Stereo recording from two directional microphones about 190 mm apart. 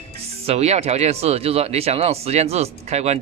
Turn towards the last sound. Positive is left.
turn(degrees=-35)  # may be behind; listen again after turning